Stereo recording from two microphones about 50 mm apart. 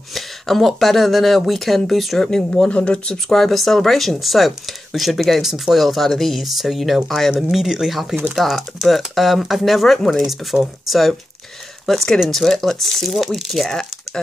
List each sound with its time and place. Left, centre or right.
0.1 s speech: centre
2.2 s speech: centre
3.3 s speech: centre
7.4 s speech: centre
10.2 s speech: centre